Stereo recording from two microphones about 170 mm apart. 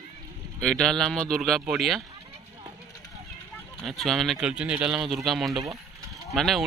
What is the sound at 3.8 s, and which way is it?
Speech, centre (ahead or behind).